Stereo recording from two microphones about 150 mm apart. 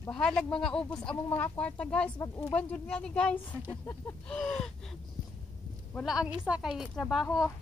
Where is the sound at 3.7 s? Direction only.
20° left (ahead or behind).